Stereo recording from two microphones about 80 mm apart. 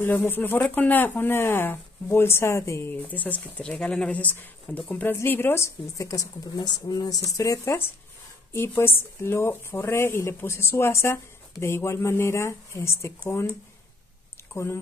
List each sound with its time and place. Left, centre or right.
0.0 s speech: left
2.9 s speech: left
6.5 s speech: left
8.5 s speech: left
14.5 s speech: left